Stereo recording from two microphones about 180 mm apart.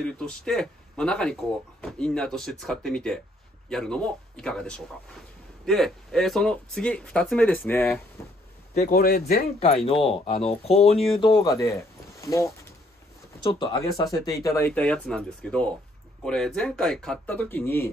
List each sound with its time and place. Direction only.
0.0 s speech: 5° left (ahead or behind)
8.7 s speech: 55° left (ahead or behind)
10.0 s speech: 30° left (ahead or behind)
13.4 s speech: 25° left (ahead or behind); by 17.8 s 10° left (ahead or behind)